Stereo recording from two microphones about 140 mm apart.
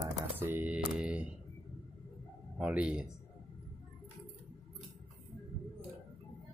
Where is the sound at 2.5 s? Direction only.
10° right (ahead or behind).